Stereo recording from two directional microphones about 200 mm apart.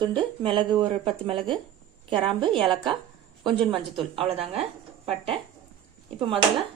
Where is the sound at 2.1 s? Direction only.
25° right (ahead or behind).